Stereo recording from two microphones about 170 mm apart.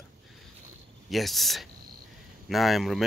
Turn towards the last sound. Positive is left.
turn(degrees=0)  # may be behind; listen again after turning